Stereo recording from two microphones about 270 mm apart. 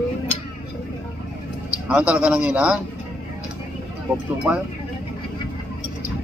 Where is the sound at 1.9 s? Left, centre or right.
Centre.